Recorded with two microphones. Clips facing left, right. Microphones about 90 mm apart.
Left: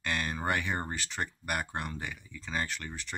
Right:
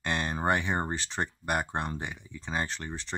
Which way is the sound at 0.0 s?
30° right (ahead or behind).